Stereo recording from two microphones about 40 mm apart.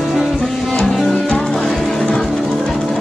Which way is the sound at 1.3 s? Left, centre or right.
Left.